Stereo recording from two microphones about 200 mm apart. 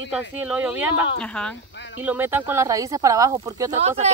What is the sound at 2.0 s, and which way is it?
Speech, 10° right (ahead or behind).